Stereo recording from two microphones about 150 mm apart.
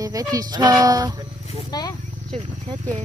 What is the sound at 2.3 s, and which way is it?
Speech, 45° right (ahead or behind).